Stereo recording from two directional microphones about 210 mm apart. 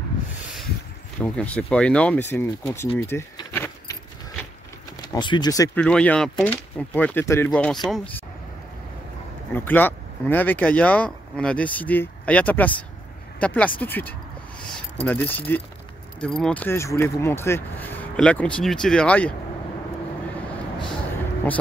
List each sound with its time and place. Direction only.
1.2 s speech: 5° left (ahead or behind)
3.0 s keys jangling: 15° left (ahead or behind)
5.1 s speech: 20° left (ahead or behind)
5.8 s speech: 5° left (ahead or behind)
9.5 s speech: 10° left (ahead or behind)